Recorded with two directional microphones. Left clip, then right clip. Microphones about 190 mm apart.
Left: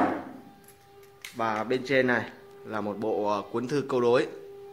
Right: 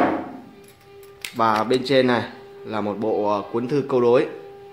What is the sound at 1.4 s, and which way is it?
Speech, 20° right (ahead or behind).